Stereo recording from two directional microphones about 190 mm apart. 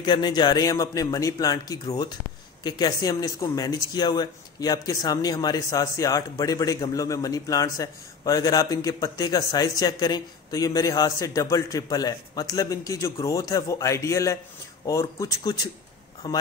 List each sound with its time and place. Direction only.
0.0 s speech: 20° left (ahead or behind)